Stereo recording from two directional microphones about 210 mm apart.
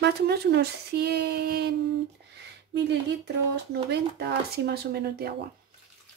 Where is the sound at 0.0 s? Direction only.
50° right (ahead or behind).